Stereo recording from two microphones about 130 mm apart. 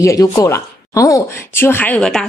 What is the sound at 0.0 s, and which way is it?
Speech, 25° left (ahead or behind).